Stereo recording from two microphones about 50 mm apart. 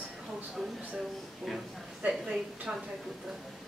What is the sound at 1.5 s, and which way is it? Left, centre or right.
Speech, centre.